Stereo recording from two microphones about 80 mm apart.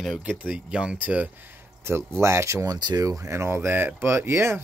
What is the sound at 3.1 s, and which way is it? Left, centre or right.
Speech, right.